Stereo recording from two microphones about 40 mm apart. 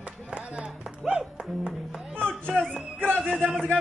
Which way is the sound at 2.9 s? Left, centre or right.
Right.